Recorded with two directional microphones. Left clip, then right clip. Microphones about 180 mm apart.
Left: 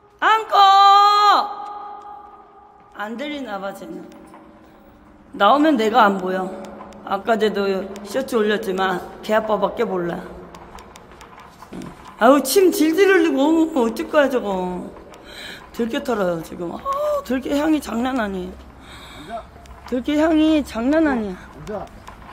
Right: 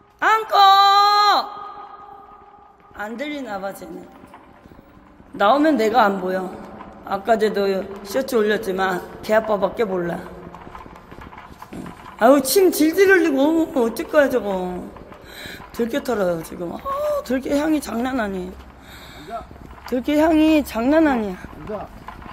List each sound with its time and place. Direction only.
0.2 s a sound: centre (ahead or behind)
3.0 s a man's voice: centre (ahead or behind)
5.4 s a man's voice: centre (ahead or behind)
12.2 s a man's voice: 5° left (ahead or behind)
19.9 s a man's voice: centre (ahead or behind)
20.8 s speech: 15° right (ahead or behind)